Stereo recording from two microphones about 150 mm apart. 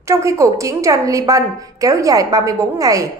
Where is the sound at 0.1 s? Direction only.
20° right (ahead or behind).